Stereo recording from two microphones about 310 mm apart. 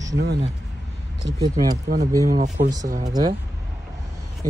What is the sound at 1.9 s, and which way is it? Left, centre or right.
Speech, right.